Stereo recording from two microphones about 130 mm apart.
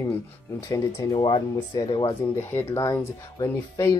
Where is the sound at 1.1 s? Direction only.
40° left (ahead or behind).